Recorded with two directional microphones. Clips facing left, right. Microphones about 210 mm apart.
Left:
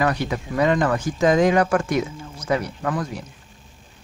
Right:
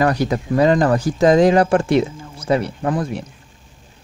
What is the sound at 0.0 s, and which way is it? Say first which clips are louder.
Speech: right 5 dB; 40° right (ahead or behind).